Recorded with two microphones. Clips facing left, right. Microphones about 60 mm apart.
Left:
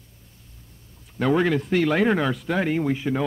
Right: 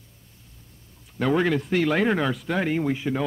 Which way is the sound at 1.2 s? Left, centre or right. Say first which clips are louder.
Left 1 dB; centre.